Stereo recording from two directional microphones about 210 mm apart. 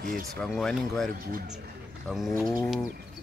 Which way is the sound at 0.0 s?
45° right (ahead or behind).